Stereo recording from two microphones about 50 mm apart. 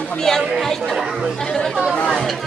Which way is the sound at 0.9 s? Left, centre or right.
Centre.